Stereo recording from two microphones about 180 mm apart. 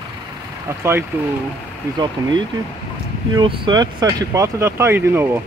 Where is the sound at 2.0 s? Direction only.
25° right (ahead or behind).